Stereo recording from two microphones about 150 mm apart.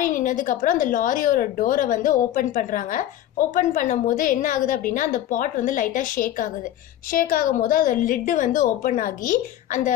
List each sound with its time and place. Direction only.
0.0 s a woman's voice: 60° left (ahead or behind)